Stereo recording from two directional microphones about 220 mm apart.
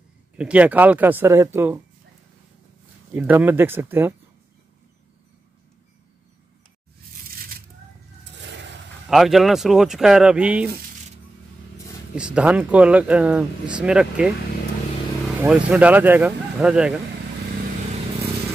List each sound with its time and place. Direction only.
0.4 s speech: 5° right (ahead or behind)
3.2 s speech: 10° right (ahead or behind)
8.5 s a sound: 55° right (ahead or behind)
9.0 s speech: centre (ahead or behind)
12.2 s speech: 5° right (ahead or behind)
15.2 s vehicle: 5° right (ahead or behind)
15.7 s speech: 5° right (ahead or behind)